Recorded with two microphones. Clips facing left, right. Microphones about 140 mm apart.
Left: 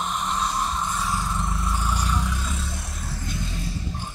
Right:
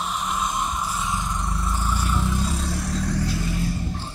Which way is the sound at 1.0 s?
20° right (ahead or behind).